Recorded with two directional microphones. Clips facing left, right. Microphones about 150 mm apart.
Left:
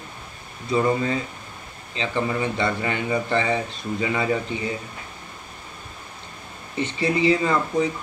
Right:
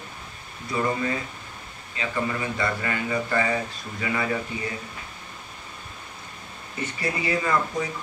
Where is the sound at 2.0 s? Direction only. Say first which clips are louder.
Left 3 dB; 25° left (ahead or behind).